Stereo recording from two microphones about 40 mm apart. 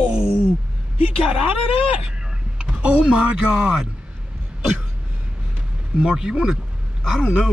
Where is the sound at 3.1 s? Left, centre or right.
Right.